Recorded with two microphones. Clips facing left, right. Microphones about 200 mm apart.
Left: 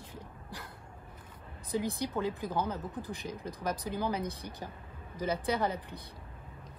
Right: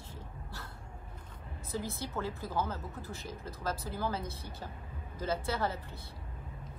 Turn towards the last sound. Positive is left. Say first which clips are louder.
# left 3 dB
turn(degrees=15)  # may be behind; listen again after turning